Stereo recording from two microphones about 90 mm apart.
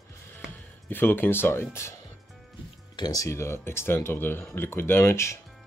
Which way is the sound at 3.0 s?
45° left (ahead or behind).